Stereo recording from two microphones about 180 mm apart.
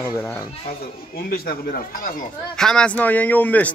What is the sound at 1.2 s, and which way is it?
Speech, 55° left (ahead or behind).